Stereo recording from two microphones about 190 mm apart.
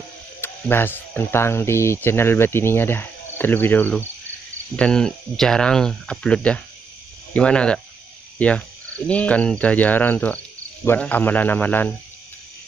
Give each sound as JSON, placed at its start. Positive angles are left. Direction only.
{"t": 0.4, "sound": "speech", "side_deg": 10}